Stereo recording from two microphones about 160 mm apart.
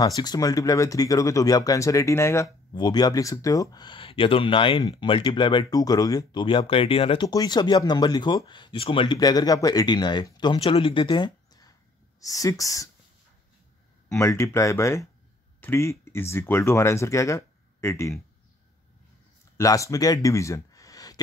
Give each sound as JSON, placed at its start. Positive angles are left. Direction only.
{"t": 0.0, "sound": "speech", "side_deg": 25}
{"t": 14.0, "sound": "speech", "side_deg": 15}
{"t": 19.5, "sound": "speech", "side_deg": 20}